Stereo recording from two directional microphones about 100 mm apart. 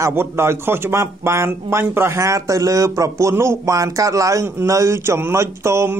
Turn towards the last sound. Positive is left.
turn(degrees=-30)  # may be behind; listen again after turning